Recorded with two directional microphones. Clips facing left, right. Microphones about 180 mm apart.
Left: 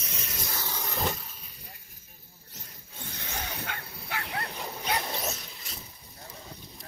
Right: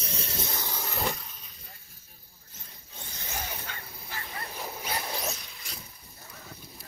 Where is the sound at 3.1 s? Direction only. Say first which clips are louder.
Even; 60° left (ahead or behind).